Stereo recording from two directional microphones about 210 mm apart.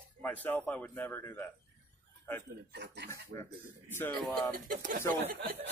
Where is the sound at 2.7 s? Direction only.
55° right (ahead or behind).